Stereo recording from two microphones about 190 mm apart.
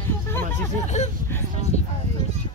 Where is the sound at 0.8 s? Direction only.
40° left (ahead or behind).